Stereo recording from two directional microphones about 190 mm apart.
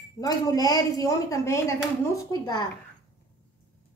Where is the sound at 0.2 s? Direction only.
20° left (ahead or behind).